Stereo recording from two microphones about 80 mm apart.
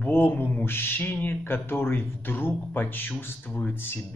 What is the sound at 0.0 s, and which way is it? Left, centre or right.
Speech, left.